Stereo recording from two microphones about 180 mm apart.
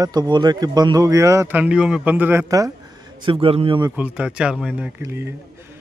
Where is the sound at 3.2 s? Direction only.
30° right (ahead or behind).